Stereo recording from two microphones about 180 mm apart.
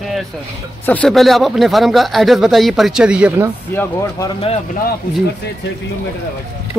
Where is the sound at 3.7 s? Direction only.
15° left (ahead or behind).